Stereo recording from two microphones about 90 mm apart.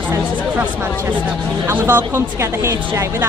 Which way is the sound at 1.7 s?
25° right (ahead or behind).